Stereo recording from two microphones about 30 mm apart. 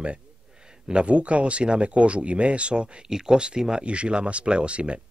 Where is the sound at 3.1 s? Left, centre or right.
Centre; by 5.0 s right.